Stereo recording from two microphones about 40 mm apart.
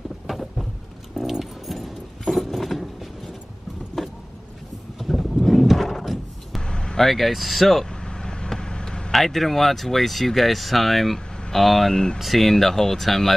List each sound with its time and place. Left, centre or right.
0.3 s a sound: centre
1.1 s keys jangling: centre
5.0 s a sound: centre
6.6 s vehicle: left
7.0 s speech: centre
8.0 s vehicle: centre
9.1 s speech: centre
12.2 s speech: centre